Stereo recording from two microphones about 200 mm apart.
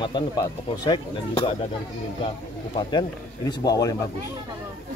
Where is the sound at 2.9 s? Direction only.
20° left (ahead or behind).